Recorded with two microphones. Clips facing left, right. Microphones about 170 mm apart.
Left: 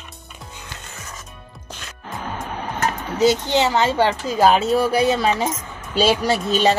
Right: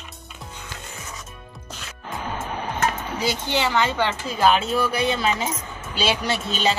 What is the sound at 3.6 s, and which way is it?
Speech, 35° left (ahead or behind).